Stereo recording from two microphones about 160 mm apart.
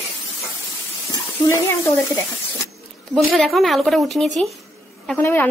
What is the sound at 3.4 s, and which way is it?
A woman's voice, centre (ahead or behind).